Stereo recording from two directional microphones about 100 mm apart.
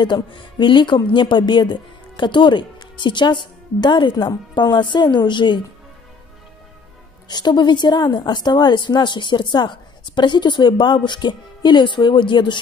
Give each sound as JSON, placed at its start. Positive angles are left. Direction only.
{"t": 0.0, "sound": "a woman's voice", "side_deg": 50}
{"t": 7.2, "sound": "a woman's voice", "side_deg": 45}